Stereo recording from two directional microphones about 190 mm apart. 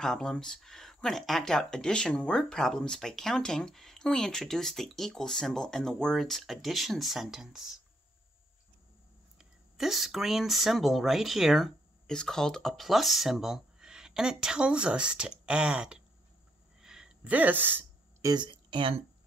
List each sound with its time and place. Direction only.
0.0 s speech: 5° left (ahead or behind)
9.4 s speech: centre (ahead or behind)
16.8 s a sound: 5° right (ahead or behind)
18.3 s speech: 25° right (ahead or behind)